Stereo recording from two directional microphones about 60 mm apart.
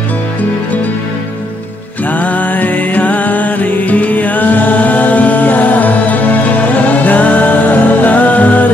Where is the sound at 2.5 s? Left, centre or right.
Left.